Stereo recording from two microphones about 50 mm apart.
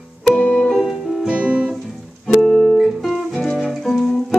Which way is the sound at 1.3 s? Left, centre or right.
Right.